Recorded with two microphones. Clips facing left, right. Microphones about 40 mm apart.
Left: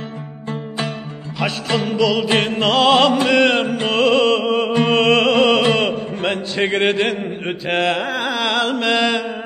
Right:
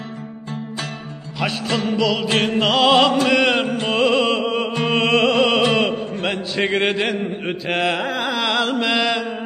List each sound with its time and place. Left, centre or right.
0.5 s music: left
1.4 s mantra: centre
4.8 s music: centre
5.7 s a sound: centre
6.2 s mantra: centre